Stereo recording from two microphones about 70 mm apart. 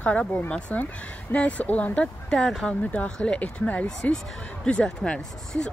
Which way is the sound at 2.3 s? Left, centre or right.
Centre.